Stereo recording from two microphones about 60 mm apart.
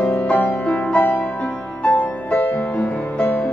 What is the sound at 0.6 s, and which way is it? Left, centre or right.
Music, centre.